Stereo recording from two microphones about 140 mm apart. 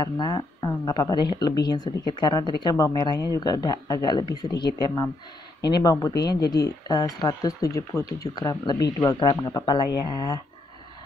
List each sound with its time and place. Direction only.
0.0 s speech: 30° left (ahead or behind)